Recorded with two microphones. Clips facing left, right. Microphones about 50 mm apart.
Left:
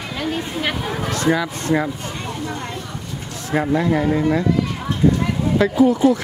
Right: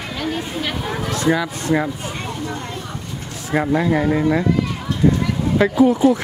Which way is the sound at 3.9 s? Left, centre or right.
Centre.